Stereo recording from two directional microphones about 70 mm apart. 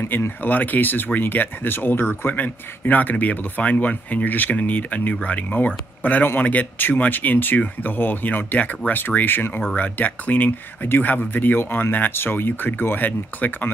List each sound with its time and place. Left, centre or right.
0.0 s speech: left
0.4 s speech: left